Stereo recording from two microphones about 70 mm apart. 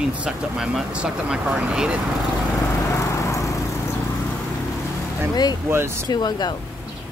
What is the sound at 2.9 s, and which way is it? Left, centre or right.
Lawn mower, left.